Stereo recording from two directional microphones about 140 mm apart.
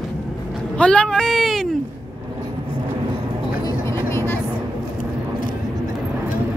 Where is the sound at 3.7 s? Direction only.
20° left (ahead or behind).